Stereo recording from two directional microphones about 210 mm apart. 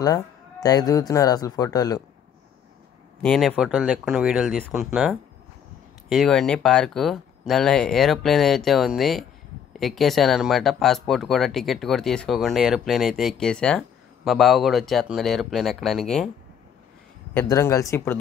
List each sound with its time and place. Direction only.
0.0 s speech: 15° left (ahead or behind)
3.2 s speech: centre (ahead or behind)
17.3 s speech: 10° left (ahead or behind)